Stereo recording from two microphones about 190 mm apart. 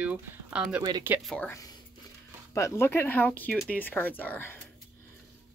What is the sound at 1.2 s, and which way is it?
Speech, 5° left (ahead or behind).